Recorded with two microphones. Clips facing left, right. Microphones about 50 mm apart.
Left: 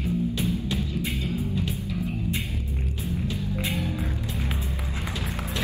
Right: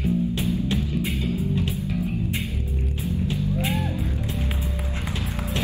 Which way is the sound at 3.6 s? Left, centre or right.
Right.